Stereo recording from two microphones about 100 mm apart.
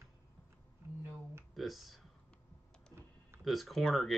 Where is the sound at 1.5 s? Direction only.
Centre (ahead or behind).